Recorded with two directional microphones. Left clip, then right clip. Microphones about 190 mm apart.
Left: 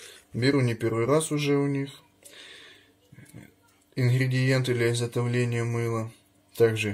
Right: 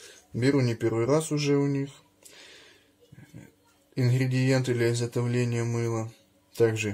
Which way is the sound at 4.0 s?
5° right (ahead or behind).